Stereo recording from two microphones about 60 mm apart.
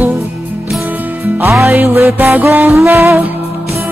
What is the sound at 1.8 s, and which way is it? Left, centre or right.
Music, right.